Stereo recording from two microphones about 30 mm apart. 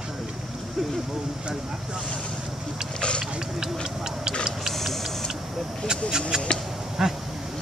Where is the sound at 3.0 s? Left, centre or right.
Left.